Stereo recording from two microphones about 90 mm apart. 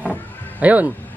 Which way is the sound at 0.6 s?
15° right (ahead or behind).